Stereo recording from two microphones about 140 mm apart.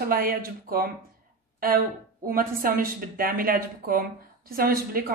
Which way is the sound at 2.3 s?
90° right.